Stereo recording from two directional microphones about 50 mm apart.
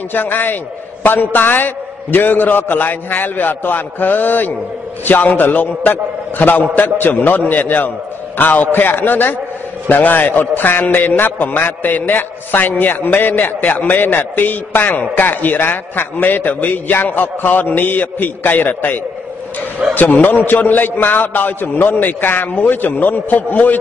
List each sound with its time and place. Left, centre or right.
0.1 s a man's voice: left